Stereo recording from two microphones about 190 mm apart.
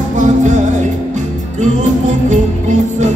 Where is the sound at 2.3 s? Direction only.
40° right (ahead or behind).